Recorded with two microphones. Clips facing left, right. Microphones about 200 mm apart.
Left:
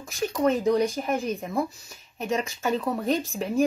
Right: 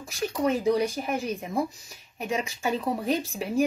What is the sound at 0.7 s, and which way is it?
Speech, 50° left (ahead or behind).